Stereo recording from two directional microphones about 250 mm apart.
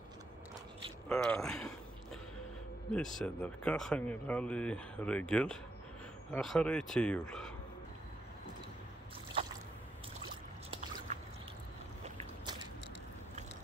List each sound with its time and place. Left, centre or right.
1.0 s speech: centre
2.9 s speech: centre
11.1 s a sound: right